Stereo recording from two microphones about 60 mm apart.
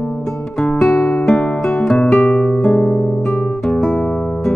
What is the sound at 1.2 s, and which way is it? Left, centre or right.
Music, left.